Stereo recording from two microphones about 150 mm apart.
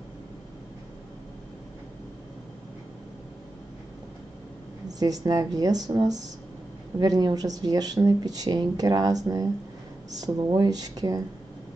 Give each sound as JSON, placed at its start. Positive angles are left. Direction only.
{"t": 4.8, "sound": "speech", "side_deg": -25}